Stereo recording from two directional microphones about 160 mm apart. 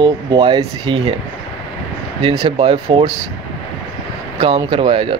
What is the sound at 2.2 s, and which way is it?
Speech, 35° right (ahead or behind).